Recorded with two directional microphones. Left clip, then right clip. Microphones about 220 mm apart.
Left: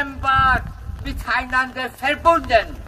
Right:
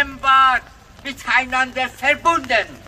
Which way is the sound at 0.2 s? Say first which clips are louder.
Right 3 dB; 5° right (ahead or behind).